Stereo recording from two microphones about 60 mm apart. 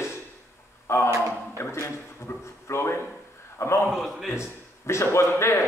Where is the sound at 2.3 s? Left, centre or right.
Left.